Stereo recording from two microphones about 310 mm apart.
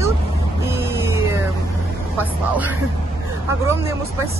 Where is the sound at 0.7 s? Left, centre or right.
Centre.